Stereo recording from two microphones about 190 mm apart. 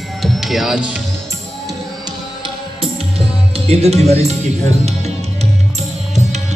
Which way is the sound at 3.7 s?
35° right (ahead or behind).